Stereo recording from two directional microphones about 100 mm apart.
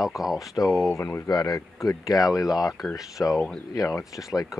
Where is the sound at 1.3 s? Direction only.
40° left (ahead or behind).